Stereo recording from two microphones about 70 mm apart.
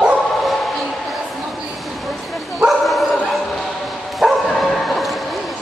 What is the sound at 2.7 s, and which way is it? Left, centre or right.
Dog, centre.